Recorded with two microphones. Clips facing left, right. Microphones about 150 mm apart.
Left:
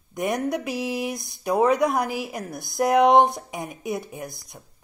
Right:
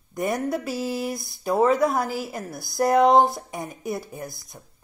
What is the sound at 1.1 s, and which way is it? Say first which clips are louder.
Speech: right 1 dB; 20° left (ahead or behind).